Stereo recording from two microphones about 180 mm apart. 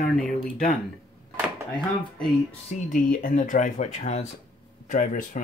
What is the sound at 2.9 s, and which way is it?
Speech, 50° left (ahead or behind).